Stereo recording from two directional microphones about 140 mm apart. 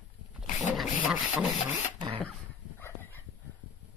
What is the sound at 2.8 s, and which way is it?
Dog, 15° left (ahead or behind).